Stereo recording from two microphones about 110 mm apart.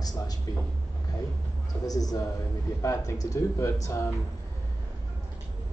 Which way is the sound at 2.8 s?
25° left (ahead or behind).